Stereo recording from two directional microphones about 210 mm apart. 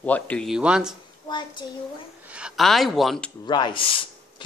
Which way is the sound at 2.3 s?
5° right (ahead or behind).